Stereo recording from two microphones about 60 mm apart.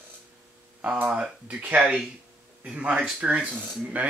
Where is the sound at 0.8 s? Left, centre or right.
Right.